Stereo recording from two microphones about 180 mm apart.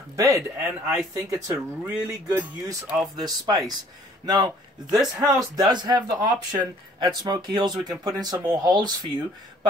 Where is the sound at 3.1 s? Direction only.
20° right (ahead or behind).